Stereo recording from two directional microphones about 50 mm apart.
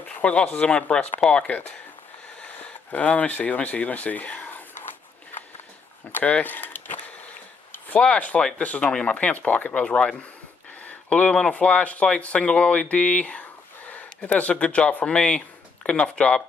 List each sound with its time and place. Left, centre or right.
0.2 s speech: left
2.4 s a sound: left
6.1 s speech: left
8.4 s speech: centre
8.6 s speech: left
10.8 s a sound: left
11.5 s speech: left